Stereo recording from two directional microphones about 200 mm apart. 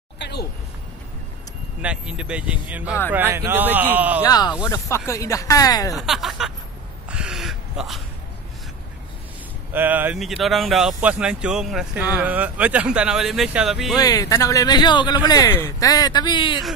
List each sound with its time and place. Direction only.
0.2 s a sound: 55° left (ahead or behind)
1.8 s speech: 5° right (ahead or behind)
4.3 s speech: 20° left (ahead or behind)
5.9 s speech: centre (ahead or behind)
7.1 s gasp: 5° right (ahead or behind)
9.7 s speech: 10° right (ahead or behind)
13.9 s speech: 15° left (ahead or behind)